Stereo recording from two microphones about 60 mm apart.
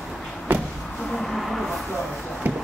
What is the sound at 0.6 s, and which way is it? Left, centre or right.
Speech, centre.